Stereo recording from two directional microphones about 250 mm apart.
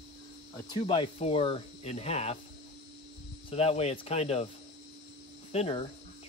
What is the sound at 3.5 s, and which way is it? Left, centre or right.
Speech, left.